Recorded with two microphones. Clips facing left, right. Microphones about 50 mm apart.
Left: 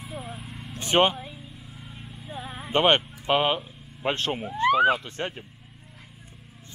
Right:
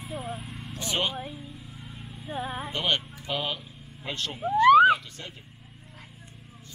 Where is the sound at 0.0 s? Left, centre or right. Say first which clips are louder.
Right 2 dB; centre.